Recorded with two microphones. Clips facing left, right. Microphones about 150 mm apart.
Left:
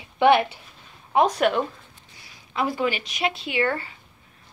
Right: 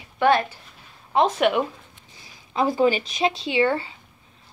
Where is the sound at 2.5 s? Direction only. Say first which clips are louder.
Right 5 dB; 30° right (ahead or behind).